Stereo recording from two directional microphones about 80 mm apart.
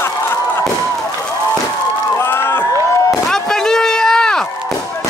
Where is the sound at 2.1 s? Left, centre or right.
Left.